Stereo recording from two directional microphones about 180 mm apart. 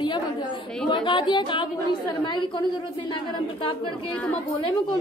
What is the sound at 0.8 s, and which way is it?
Speech, 25° left (ahead or behind).